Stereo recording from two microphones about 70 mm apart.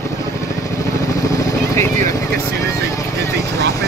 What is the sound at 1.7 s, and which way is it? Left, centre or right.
Vehicle, left.